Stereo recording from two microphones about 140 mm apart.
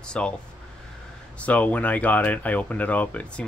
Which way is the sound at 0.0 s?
5° left (ahead or behind).